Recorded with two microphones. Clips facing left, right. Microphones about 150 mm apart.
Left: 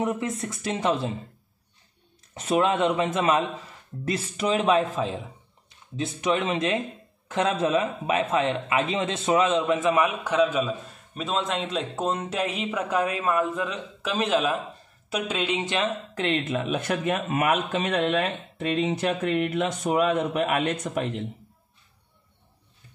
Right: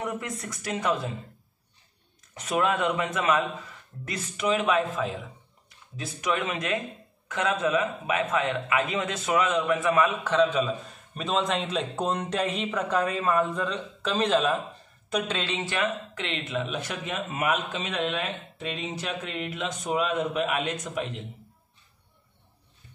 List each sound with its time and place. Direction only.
0.0 s speech: 25° left (ahead or behind)
2.3 s a man's voice: 30° left (ahead or behind)
16.2 s a man's voice: 45° left (ahead or behind)